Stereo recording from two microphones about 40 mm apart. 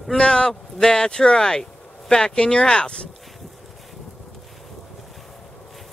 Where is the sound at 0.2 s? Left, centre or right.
Left.